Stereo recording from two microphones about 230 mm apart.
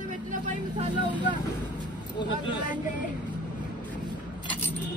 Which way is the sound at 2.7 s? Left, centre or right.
Left.